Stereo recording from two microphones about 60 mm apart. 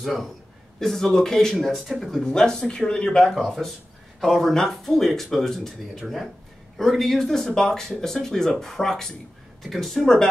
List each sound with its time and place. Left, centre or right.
0.0 s speech: centre
2.2 s speech: centre